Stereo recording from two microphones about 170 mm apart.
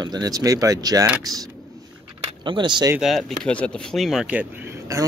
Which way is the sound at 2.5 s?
25° right (ahead or behind).